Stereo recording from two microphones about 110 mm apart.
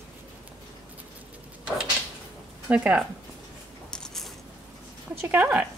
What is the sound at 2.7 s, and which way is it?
Speech, 10° right (ahead or behind).